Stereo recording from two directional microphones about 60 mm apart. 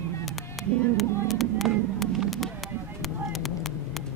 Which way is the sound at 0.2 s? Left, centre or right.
Centre.